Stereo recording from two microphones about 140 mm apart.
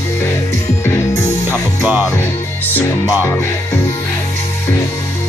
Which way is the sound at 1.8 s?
15° right (ahead or behind).